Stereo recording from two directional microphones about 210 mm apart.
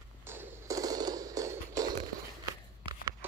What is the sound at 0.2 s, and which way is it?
Music, 10° right (ahead or behind).